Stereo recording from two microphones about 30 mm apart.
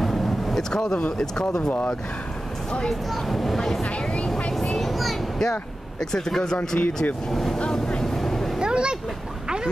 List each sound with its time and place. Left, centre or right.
0.0 s vehicle: centre
1.3 s speech: left
3.3 s speech: centre
4.7 s a sound: centre
5.4 s speech: centre
8.0 s vehicle: centre
8.5 s a sound: right